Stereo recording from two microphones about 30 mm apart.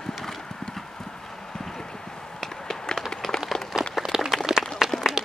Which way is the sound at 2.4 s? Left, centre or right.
Centre.